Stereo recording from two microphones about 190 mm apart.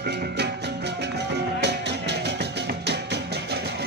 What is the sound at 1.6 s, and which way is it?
Music, 65° right (ahead or behind).